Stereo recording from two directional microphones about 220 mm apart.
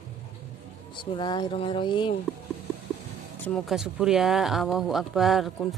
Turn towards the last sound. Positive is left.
turn(degrees=0)  # may be behind; listen again after turning